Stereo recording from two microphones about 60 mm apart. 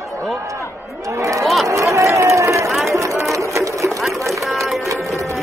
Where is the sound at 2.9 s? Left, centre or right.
Right.